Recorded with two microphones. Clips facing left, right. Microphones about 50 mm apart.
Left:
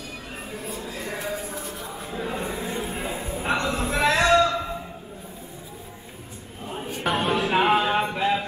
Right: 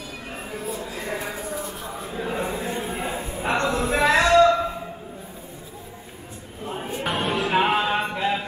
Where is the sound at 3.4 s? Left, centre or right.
Right.